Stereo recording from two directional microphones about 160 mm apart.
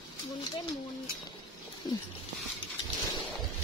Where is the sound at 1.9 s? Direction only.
25° left (ahead or behind).